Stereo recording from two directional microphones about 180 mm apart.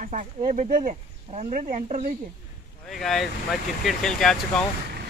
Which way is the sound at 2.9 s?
Centre (ahead or behind).